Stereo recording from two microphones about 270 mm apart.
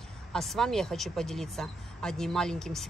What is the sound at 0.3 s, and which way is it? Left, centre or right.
Speech, centre.